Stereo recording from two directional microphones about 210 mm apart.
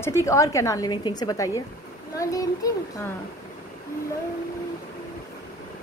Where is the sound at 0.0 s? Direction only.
15° left (ahead or behind).